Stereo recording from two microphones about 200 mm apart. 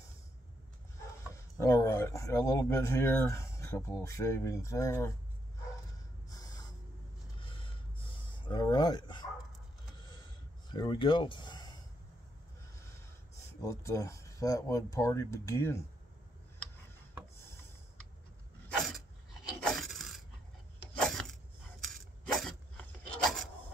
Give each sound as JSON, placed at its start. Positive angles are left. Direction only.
{"t": 1.3, "sound": "speech", "side_deg": 15}
{"t": 6.2, "sound": "snort", "side_deg": 20}
{"t": 7.3, "sound": "a sound", "side_deg": 25}
{"t": 8.5, "sound": "dog", "side_deg": 20}
{"t": 10.7, "sound": "speech", "side_deg": 25}
{"t": 13.6, "sound": "speech", "side_deg": 15}
{"t": 19.6, "sound": "a sound", "side_deg": 0}